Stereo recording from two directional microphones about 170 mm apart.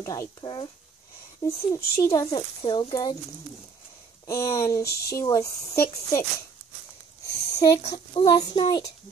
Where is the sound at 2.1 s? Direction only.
25° left (ahead or behind).